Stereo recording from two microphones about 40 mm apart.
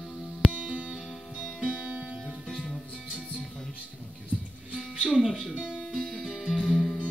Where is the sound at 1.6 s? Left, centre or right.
Right.